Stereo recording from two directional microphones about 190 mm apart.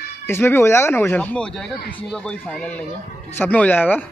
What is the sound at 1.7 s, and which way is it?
Speech, 50° left (ahead or behind).